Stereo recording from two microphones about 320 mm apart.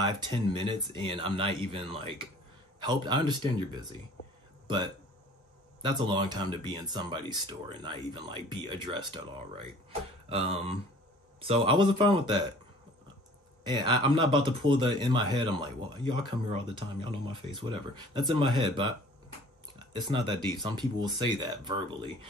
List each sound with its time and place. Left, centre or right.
0.0 s speech: centre
10.3 s speech: centre
13.7 s speech: centre
20.3 s speech: centre
20.7 s speech: centre